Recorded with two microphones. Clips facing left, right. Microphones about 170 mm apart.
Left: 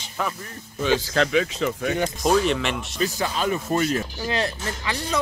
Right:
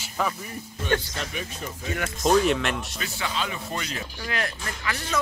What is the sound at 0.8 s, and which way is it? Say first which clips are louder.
Speech: left 6 dB; 90° left.